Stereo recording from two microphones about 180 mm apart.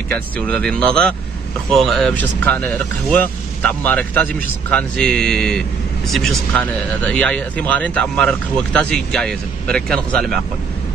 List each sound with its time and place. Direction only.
0.1 s speech: 5° left (ahead or behind)